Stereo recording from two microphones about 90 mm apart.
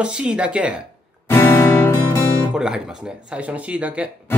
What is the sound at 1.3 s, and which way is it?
Music, 30° left (ahead or behind).